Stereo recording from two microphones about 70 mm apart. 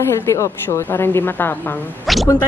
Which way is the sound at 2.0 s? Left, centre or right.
Centre.